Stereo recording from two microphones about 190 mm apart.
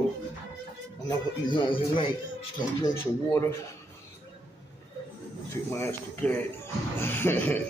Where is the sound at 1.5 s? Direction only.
25° left (ahead or behind).